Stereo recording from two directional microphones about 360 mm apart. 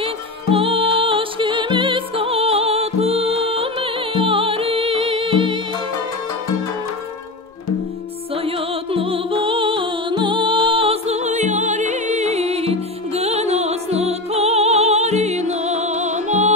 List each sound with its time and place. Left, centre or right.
0.0 s music: centre
8.5 s music: centre